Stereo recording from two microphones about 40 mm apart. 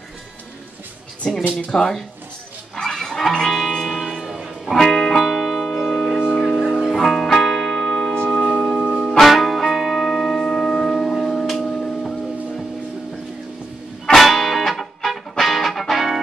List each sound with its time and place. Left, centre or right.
1.5 s speech: centre
2.7 s music: centre
3.8 s music: centre
4.7 s music: centre
8.7 s music: right
9.2 s music: centre
14.0 s music: centre